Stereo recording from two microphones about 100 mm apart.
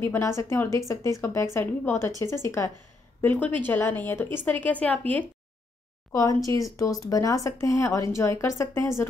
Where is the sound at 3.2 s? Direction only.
20° left (ahead or behind).